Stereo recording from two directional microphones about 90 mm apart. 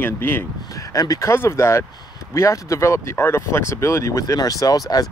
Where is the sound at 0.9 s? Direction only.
40° left (ahead or behind).